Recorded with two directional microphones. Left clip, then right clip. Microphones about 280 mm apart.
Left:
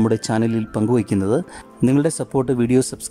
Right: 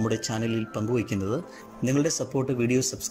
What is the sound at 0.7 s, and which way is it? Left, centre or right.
Speech, centre.